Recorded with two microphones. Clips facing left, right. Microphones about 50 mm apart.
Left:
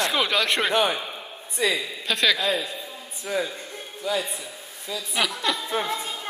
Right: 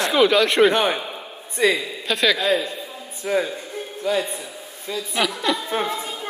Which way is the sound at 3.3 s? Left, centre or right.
Right.